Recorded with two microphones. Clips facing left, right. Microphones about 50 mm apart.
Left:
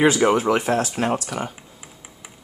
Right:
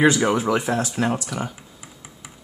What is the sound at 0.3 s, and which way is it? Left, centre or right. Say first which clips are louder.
Speech: left 2 dB; left.